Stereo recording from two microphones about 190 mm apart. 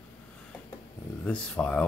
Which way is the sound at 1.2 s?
5° left (ahead or behind).